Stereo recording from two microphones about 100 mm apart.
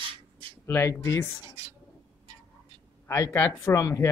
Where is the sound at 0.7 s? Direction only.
30° left (ahead or behind).